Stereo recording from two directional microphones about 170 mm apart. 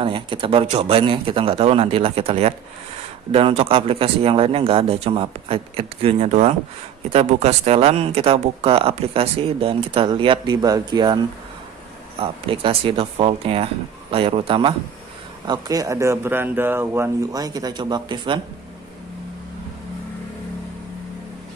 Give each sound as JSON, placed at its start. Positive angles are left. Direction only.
{"t": 0.0, "sound": "speech", "side_deg": -30}
{"t": 15.4, "sound": "speech", "side_deg": -25}